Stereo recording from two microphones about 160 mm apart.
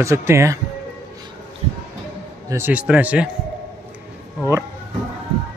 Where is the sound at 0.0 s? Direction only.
15° right (ahead or behind).